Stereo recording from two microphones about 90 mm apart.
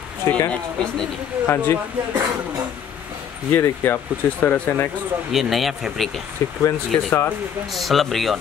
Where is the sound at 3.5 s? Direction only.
25° left (ahead or behind).